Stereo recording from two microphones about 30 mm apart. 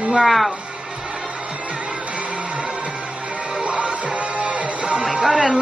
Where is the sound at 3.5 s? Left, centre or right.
Right.